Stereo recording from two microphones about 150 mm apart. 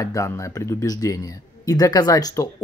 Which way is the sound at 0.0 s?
20° left (ahead or behind).